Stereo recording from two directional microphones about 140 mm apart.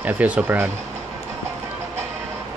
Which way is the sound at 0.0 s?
10° right (ahead or behind).